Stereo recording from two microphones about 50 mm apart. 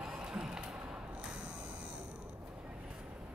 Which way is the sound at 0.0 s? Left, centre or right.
Centre.